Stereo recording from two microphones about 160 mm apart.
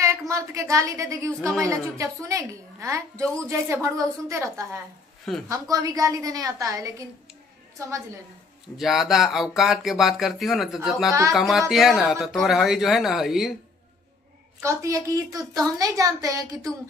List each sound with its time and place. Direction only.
0.0 s a woman's voice: 20° right (ahead or behind)
8.7 s speech: centre (ahead or behind)
14.6 s a woman's voice: 20° right (ahead or behind)